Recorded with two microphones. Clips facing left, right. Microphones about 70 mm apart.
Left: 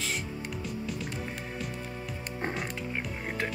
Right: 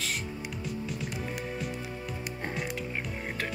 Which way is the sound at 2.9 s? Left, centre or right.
Centre.